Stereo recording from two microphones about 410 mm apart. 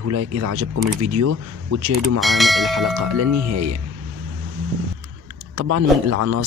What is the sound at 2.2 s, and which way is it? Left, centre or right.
Speech, centre.